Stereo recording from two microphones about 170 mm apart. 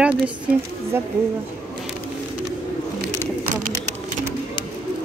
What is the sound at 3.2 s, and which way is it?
Bird, 45° right (ahead or behind).